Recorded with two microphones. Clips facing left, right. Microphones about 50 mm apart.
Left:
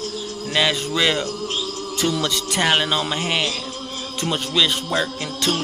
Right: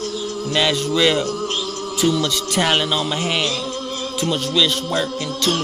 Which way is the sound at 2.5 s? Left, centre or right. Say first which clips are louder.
Even; centre.